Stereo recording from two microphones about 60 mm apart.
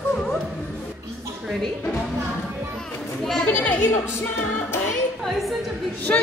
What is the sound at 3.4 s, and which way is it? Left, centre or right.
Speech, left.